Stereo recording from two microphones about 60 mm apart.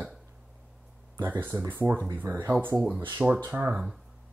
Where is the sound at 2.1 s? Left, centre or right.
Right.